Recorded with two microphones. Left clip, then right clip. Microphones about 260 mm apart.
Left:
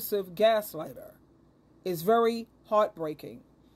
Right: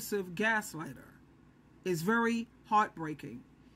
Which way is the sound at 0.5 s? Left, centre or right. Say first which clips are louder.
Left 5 dB; left.